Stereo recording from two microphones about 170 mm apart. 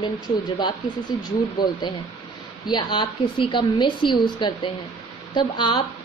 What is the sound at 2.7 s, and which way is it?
A woman's voice, 25° left (ahead or behind).